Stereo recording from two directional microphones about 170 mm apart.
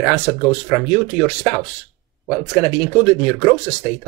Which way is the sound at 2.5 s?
5° right (ahead or behind).